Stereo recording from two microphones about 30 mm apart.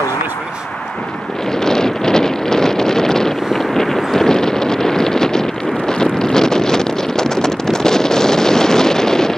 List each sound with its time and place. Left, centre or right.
1.6 s wind noise: centre